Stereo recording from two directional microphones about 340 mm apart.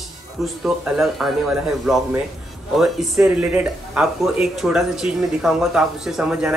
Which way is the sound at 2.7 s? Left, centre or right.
Centre.